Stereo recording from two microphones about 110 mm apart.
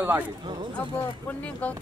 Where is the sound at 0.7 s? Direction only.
15° left (ahead or behind).